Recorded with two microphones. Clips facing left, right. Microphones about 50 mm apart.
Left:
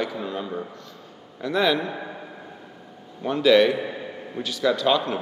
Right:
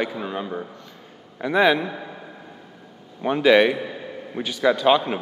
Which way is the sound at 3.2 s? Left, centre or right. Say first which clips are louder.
Right 1 dB; right.